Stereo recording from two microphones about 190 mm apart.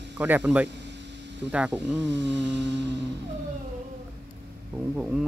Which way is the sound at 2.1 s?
65° right (ahead or behind).